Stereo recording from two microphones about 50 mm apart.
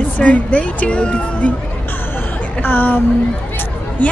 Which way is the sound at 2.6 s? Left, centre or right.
Left.